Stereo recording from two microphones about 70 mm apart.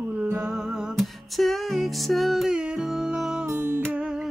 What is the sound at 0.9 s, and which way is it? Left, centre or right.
Music, centre.